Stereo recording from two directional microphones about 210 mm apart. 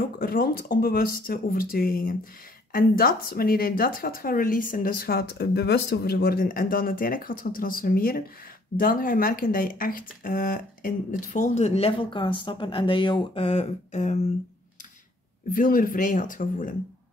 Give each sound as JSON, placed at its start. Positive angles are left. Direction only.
{"t": 0.2, "sound": "speech", "side_deg": 45}
{"t": 15.5, "sound": "speech", "side_deg": 40}